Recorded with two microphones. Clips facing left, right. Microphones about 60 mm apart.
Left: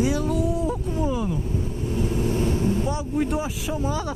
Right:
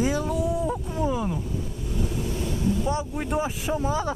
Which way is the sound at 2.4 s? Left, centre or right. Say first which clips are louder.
Left 1 dB; left.